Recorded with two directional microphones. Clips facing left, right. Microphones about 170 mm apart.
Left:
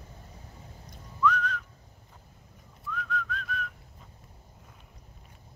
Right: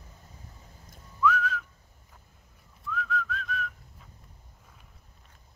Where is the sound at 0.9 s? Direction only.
5° right (ahead or behind).